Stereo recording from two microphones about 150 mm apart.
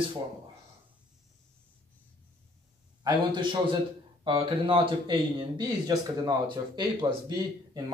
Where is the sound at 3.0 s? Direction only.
30° right (ahead or behind).